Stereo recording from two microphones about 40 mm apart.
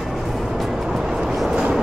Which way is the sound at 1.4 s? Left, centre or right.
Right.